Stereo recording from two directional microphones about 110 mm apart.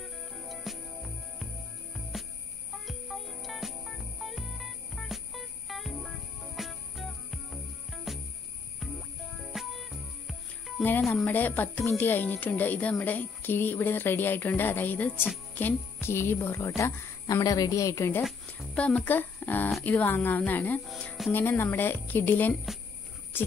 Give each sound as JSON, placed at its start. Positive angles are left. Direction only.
{"t": 0.0, "sound": "music", "side_deg": 0}
{"t": 2.9, "sound": "music", "side_deg": 0}
{"t": 9.5, "sound": "music", "side_deg": 0}
{"t": 10.8, "sound": "cricket", "side_deg": 15}
{"t": 11.2, "sound": "speech", "side_deg": 15}
{"t": 18.8, "sound": "speech", "side_deg": 10}